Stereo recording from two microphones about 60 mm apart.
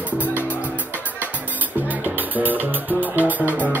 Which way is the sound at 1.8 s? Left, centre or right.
Right.